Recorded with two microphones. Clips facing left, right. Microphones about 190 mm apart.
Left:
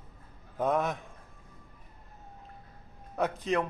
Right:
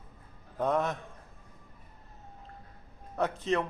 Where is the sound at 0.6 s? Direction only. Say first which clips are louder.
Even; centre (ahead or behind).